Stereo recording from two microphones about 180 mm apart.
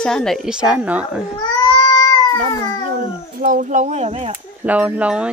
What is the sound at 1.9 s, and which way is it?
Cat, 20° left (ahead or behind).